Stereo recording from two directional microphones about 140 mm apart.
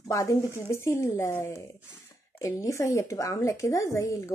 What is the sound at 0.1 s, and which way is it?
Speech, 20° left (ahead or behind).